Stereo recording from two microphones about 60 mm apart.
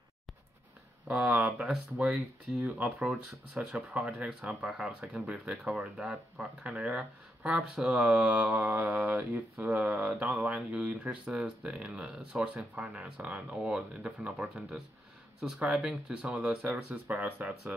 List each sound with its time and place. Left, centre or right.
1.0 s mantra: right
4.4 s speech: centre
8.1 s mantra: right
12.7 s speech: centre
15.4 s mantra: centre